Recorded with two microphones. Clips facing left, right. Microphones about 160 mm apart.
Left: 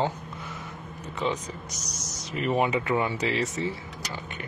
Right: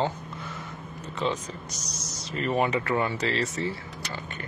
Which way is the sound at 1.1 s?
10° left (ahead or behind).